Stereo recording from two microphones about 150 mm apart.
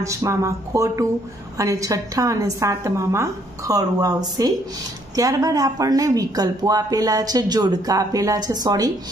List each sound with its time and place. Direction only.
0.0 s speech: 20° right (ahead or behind)